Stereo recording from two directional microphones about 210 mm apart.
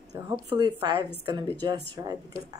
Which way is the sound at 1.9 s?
15° right (ahead or behind).